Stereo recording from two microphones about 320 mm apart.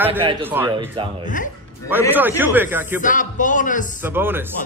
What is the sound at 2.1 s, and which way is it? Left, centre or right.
Speech, centre.